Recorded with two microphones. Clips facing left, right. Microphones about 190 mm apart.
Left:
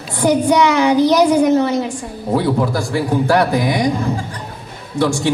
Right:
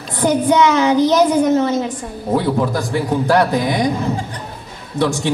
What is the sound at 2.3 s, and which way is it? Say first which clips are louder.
Child singing: left 1 dB; 15° right (ahead or behind).